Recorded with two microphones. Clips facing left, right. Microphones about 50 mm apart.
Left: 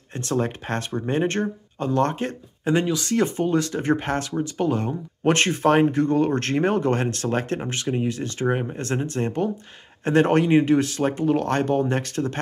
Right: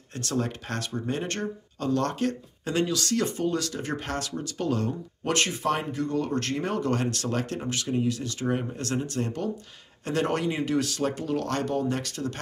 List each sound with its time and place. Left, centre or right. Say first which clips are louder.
0.1 s speech: left 5 dB; left
5.3 s speech: left 7 dB; left